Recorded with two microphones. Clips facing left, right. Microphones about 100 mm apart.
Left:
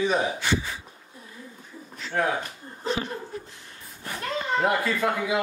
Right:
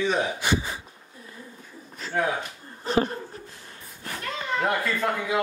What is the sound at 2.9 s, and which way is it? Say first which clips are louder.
Speech: right 5 dB; 40° right (ahead or behind).